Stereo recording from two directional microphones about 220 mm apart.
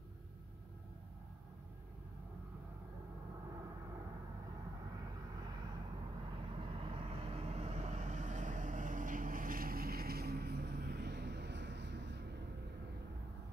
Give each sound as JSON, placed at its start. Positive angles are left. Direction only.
{"t": 6.3, "sound": "vehicle", "side_deg": -25}